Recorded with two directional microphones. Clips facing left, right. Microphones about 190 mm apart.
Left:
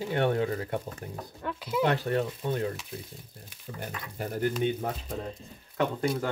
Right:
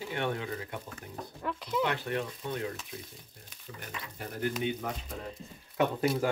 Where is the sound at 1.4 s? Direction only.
5° left (ahead or behind).